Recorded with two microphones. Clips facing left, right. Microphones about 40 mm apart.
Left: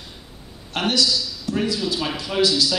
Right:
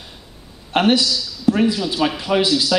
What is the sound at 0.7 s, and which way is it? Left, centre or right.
A man's voice, right.